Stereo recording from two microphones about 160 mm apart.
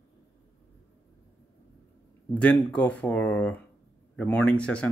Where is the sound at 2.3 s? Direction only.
10° left (ahead or behind).